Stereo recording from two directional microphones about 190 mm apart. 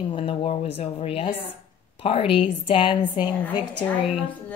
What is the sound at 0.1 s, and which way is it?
A woman's voice, 30° left (ahead or behind).